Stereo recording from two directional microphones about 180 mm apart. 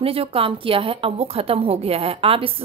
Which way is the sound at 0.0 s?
30° right (ahead or behind).